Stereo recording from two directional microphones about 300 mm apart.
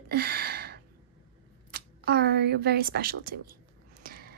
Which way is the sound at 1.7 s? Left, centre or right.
Right.